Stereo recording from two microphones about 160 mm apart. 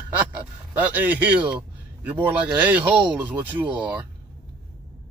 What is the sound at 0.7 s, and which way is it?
A man's voice, 10° right (ahead or behind).